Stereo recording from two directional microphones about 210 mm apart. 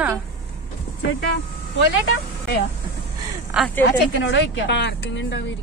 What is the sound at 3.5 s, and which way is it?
Speech, 5° left (ahead or behind).